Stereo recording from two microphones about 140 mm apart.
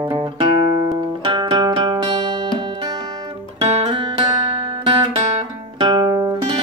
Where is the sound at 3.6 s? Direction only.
45° right (ahead or behind); by 6.3 s 25° right (ahead or behind).